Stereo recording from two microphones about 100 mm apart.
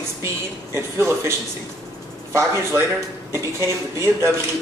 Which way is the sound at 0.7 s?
25° right (ahead or behind).